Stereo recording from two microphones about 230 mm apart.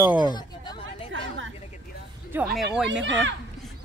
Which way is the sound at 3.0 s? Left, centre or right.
Right.